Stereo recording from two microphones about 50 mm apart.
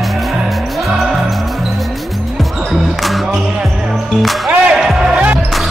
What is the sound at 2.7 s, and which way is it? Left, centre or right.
Music, centre.